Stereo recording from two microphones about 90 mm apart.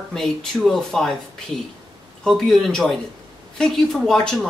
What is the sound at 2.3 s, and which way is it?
Speech, 5° left (ahead or behind).